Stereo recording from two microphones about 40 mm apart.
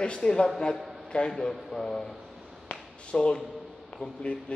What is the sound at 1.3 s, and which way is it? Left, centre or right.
Speech, centre.